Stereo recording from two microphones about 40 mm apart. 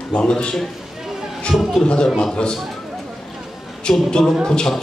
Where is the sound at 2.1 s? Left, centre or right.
Centre.